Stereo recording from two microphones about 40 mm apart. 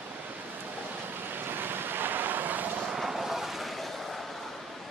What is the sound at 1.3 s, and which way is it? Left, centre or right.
Vehicle, right.